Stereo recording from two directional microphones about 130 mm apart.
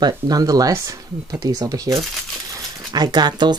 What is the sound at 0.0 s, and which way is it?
Speech, 30° right (ahead or behind).